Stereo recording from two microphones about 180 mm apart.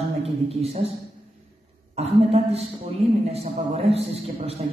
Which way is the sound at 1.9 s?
35° right (ahead or behind).